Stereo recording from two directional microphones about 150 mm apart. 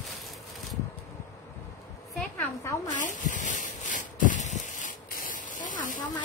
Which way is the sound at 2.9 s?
60° left (ahead or behind).